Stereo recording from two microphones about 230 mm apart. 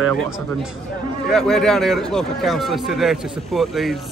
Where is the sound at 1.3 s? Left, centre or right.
Centre.